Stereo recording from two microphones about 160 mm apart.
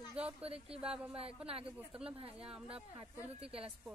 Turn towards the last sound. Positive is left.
turn(degrees=-35)  # may be behind; listen again after turning